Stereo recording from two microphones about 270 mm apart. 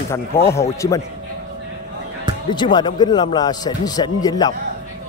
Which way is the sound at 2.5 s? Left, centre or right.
Centre.